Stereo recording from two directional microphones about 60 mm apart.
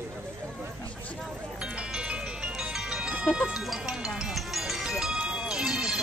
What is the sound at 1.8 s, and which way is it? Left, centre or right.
Music, centre.